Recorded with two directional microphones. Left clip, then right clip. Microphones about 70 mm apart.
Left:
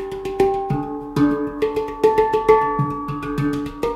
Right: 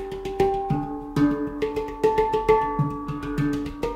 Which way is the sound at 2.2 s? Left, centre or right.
Left.